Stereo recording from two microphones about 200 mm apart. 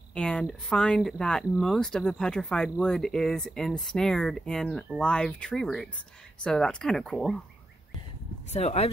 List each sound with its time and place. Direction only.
0.1 s speech: 5° left (ahead or behind)
8.5 s speech: 30° left (ahead or behind)